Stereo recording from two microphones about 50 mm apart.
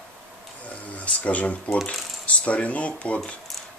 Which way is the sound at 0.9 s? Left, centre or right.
Left.